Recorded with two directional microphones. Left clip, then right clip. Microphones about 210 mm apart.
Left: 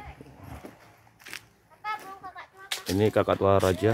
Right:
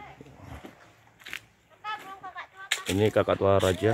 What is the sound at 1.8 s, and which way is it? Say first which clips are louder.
Whip: left 2 dB; 20° right (ahead or behind).